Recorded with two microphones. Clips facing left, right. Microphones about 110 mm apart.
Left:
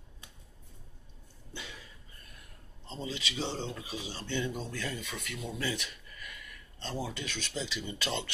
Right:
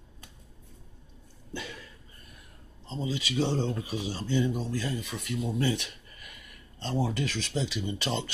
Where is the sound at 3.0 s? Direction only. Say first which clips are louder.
Right 8 dB; 45° right (ahead or behind).